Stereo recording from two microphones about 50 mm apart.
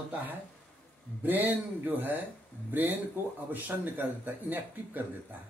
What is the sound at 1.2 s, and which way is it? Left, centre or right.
A man's voice, right.